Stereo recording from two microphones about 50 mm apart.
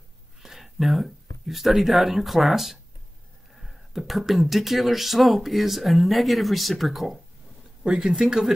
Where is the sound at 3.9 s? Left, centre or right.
Centre.